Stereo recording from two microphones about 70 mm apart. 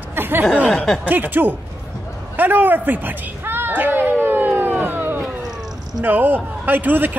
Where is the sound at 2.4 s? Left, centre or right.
Right.